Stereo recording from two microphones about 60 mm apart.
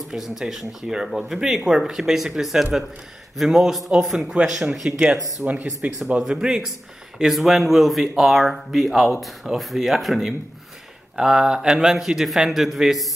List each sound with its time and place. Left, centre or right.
0.3 s speech: centre
5.8 s speech: right
6.1 s speech: centre
11.1 s speech: centre